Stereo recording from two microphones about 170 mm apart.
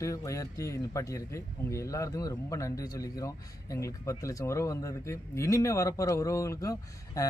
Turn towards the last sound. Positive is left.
turn(degrees=20)  # may be behind; listen again after turning